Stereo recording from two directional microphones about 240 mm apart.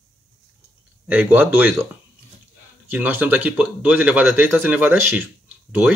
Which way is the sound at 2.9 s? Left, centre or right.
Centre.